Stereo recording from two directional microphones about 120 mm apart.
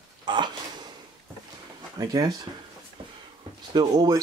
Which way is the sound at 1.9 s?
30° right (ahead or behind).